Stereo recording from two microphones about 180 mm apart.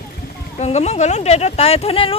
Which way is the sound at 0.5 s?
35° left (ahead or behind).